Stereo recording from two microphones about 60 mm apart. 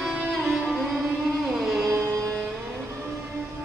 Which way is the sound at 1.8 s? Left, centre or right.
Right.